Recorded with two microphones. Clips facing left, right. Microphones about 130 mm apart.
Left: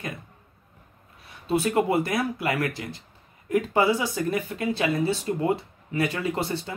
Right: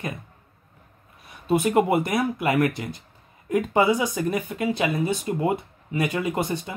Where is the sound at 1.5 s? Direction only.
20° right (ahead or behind).